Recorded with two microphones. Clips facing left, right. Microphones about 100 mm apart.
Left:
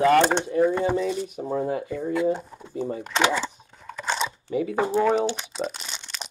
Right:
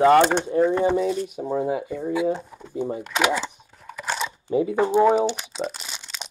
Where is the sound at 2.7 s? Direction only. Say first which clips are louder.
Right 2 dB; 20° right (ahead or behind).